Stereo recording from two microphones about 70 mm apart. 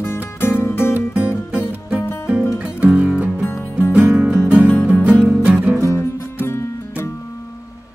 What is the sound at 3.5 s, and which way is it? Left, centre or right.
Music, left.